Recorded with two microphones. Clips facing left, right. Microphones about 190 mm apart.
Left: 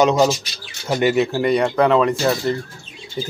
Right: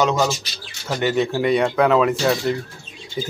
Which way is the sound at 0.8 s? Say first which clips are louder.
Left 4 dB; 15° left (ahead or behind).